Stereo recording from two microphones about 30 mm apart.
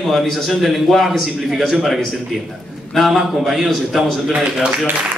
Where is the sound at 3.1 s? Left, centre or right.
Centre.